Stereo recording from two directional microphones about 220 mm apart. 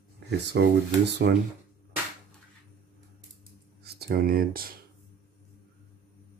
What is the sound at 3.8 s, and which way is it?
Speech, 45° right (ahead or behind).